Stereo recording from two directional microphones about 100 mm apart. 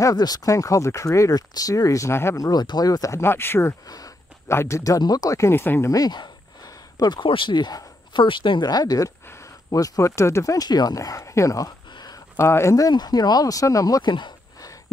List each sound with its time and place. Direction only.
0.0 s speech: 40° left (ahead or behind)
2.4 s speech: 45° left (ahead or behind); by 3.7 s 25° left (ahead or behind)
3.8 s speech: 40° left (ahead or behind)
4.5 s speech: 30° left (ahead or behind)
5.9 s speech: 40° left (ahead or behind)
11.9 s a sound: 45° left (ahead or behind)
12.4 s speech: 25° left (ahead or behind)